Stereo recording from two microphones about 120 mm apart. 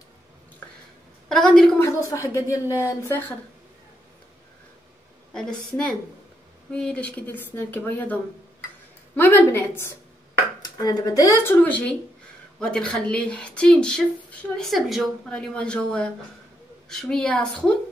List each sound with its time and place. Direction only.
1.3 s a woman's voice: 5° left (ahead or behind)
1.8 s speech: 25° left (ahead or behind)
5.3 s speech: 5° left (ahead or behind)